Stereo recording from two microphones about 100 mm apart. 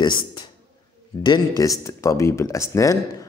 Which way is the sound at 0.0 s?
50° left (ahead or behind).